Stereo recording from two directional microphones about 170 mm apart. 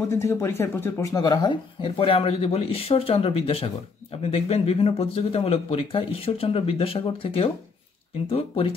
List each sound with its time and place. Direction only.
0.1 s speech: 15° left (ahead or behind); by 8.7 s 35° left (ahead or behind)